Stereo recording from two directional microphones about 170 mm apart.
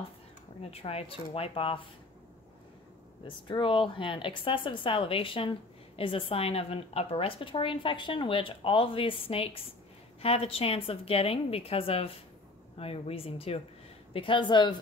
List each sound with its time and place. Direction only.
0.6 s a woman's voice: 35° left (ahead or behind)
3.4 s a woman's voice: 30° left (ahead or behind)